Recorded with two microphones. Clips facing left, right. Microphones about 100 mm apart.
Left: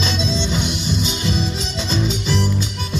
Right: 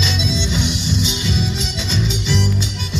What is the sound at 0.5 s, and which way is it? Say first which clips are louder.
Music: right 1 dB; 45° left (ahead or behind).